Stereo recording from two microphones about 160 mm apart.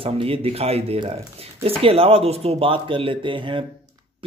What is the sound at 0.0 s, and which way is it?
Speech, 35° right (ahead or behind).